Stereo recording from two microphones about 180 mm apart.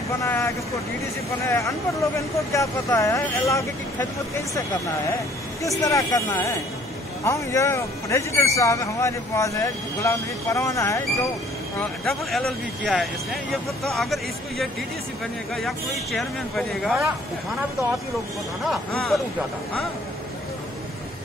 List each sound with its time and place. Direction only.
0.2 s speech: 15° left (ahead or behind)
1.5 s speech: 15° left (ahead or behind)
5.6 s speech: 20° left (ahead or behind)
11.8 s speech: centre (ahead or behind)
18.7 s speech: centre (ahead or behind)